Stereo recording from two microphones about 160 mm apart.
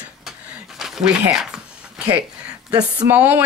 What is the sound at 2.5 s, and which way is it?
Speech, 25° right (ahead or behind).